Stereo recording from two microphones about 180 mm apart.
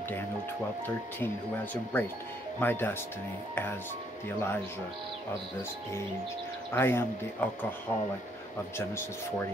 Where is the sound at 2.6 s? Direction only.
10° left (ahead or behind).